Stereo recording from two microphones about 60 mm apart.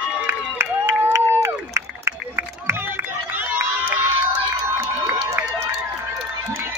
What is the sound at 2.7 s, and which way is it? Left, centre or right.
Run, right.